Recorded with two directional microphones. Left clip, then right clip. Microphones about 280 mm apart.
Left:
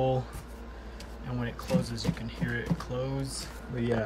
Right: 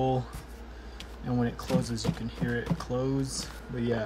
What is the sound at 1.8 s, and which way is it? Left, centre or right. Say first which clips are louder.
Speech: right 1 dB; centre.